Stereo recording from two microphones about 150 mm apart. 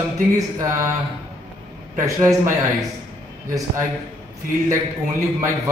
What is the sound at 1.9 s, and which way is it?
Speech, 20° right (ahead or behind).